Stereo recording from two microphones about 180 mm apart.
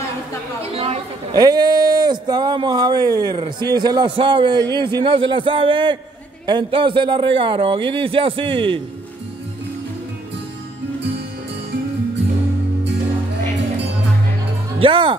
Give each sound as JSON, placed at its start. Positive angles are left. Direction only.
{"t": 0.7, "sound": "speech", "side_deg": -35}
{"t": 1.3, "sound": "speech", "side_deg": -20}
{"t": 14.8, "sound": "speech", "side_deg": -25}